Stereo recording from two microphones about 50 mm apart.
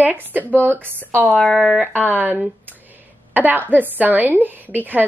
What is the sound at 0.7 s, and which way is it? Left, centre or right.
Speech, right.